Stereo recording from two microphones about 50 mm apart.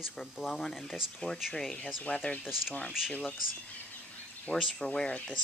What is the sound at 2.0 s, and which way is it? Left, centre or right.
Speech, left.